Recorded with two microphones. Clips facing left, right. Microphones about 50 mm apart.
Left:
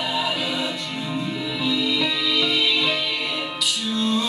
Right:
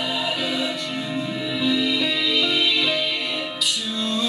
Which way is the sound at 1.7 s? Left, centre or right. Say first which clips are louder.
Right 1 dB; centre.